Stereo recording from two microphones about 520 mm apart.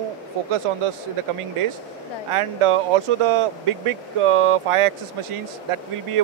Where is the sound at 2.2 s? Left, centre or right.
Right.